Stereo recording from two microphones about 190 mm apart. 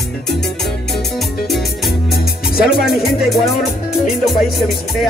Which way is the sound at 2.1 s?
50° left (ahead or behind).